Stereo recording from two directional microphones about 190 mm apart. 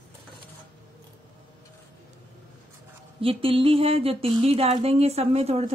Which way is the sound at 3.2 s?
30° right (ahead or behind).